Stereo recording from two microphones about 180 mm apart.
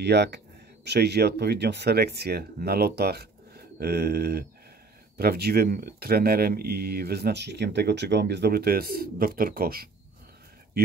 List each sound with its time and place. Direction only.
0.0 s speech: 70° right (ahead or behind)